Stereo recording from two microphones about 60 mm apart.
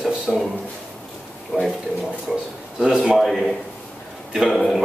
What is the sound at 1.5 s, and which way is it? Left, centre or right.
A man's voice, centre.